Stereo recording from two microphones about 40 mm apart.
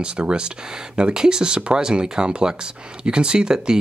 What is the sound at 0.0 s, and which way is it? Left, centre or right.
Speech, right.